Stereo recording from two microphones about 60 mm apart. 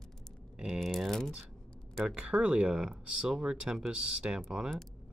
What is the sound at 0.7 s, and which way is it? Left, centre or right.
Typing, centre.